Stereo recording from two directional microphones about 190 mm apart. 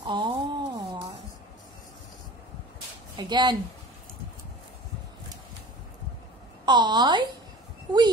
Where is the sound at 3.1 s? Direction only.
25° right (ahead or behind).